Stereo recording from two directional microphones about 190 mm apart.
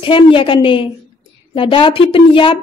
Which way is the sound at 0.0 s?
25° left (ahead or behind).